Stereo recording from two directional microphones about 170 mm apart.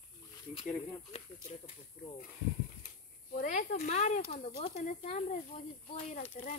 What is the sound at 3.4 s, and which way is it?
Speech, 50° left (ahead or behind).